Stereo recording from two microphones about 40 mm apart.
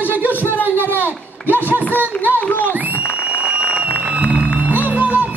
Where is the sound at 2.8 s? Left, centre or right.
Right.